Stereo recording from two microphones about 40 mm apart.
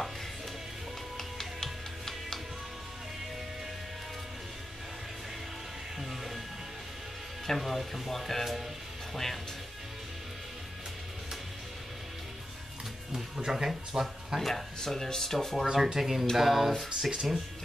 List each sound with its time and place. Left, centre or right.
1.1 s music: centre
5.9 s music: centre
7.4 s speech: centre
13.1 s speech: centre
14.4 s speech: centre
15.6 s speech: centre
17.0 s speech: centre